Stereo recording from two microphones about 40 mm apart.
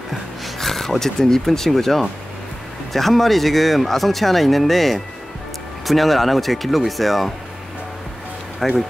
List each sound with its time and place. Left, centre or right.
0.6 s speech: centre
8.5 s speech: centre